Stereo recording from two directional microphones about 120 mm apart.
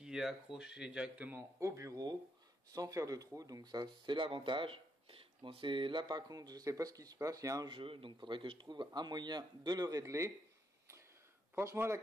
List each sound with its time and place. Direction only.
0.0 s speech: 5° right (ahead or behind); by 7.7 s 30° right (ahead or behind)
7.7 s speech: 50° right (ahead or behind); by 10.3 s 25° right (ahead or behind)
11.5 s speech: 20° right (ahead or behind)